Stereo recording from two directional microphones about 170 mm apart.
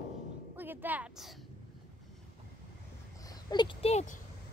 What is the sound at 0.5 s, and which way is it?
Speech, 10° right (ahead or behind).